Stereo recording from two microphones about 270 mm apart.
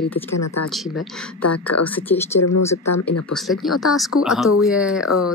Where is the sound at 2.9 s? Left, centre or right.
Left.